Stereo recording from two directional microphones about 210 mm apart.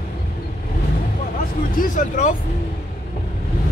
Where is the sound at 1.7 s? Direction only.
40° left (ahead or behind).